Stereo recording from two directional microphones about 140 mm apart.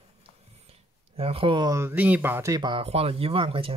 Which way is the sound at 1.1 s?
45° right (ahead or behind).